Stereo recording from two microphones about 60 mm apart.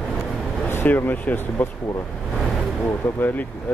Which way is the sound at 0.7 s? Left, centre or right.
Left.